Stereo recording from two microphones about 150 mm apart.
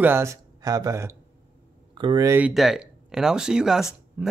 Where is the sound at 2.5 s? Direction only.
Centre (ahead or behind).